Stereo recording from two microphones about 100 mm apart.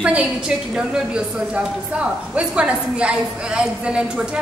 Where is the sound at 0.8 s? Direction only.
10° right (ahead or behind).